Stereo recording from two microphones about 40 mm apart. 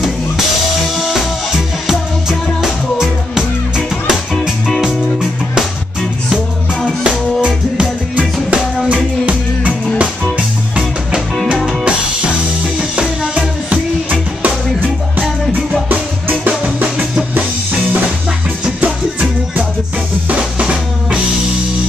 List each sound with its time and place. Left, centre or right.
0.9 s music: centre
1.9 s music: centre
8.2 s music: right
12.9 s music: right
15.9 s music: right